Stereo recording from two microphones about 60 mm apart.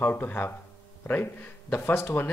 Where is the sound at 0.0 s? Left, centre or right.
Left.